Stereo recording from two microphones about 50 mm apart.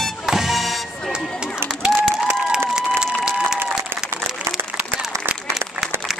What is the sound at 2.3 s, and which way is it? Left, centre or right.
Applause, centre.